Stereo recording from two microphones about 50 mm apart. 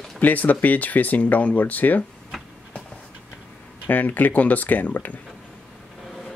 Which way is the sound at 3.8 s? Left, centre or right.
Left.